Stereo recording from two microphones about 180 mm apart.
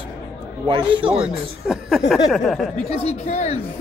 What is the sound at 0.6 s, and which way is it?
Speech, 30° right (ahead or behind).